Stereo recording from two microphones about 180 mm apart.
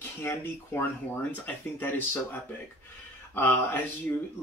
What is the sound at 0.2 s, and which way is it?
Speech, 15° left (ahead or behind).